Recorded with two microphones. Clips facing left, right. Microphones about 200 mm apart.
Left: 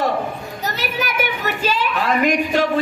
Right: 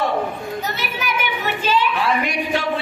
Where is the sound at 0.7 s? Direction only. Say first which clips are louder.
Left 2 dB; 45° left (ahead or behind).